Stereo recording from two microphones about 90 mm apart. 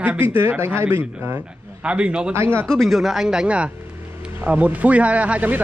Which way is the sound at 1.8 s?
10° right (ahead or behind).